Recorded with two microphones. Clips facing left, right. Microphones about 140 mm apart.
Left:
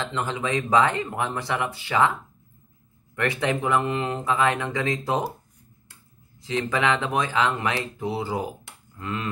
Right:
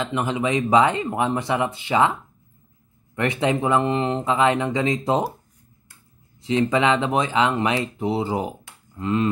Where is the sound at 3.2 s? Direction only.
20° right (ahead or behind).